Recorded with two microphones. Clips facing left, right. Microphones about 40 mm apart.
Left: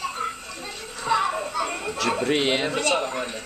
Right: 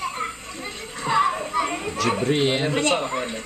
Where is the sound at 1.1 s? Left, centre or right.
Centre.